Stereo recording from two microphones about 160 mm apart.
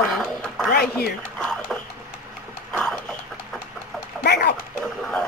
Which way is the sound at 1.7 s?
Centre (ahead or behind).